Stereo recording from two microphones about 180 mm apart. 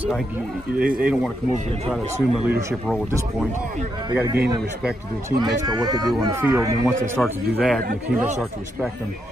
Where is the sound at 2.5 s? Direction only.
15° right (ahead or behind).